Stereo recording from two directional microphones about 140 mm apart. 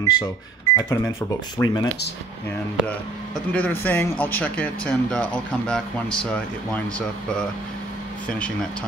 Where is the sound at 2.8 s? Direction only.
10° left (ahead or behind).